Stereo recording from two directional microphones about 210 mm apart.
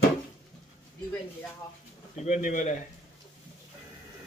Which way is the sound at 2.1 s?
35° left (ahead or behind).